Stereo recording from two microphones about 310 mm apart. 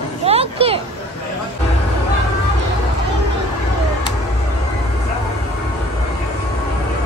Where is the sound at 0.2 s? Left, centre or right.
Centre.